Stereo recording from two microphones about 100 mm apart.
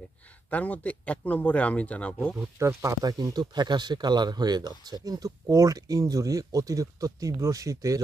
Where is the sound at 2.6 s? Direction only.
30° right (ahead or behind).